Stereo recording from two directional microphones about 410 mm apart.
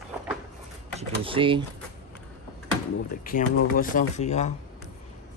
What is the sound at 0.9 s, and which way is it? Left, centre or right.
Speech, centre.